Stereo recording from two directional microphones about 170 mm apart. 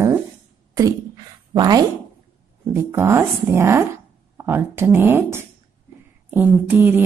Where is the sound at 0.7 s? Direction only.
20° right (ahead or behind).